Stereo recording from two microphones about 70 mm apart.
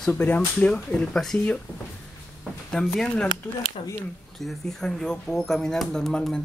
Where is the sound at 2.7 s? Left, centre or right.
Centre.